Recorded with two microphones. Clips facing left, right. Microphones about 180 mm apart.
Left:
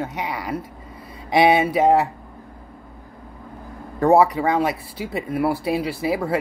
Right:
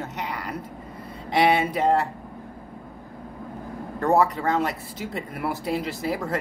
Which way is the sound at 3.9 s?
10° left (ahead or behind).